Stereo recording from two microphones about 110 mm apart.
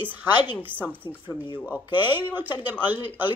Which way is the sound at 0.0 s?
15° right (ahead or behind).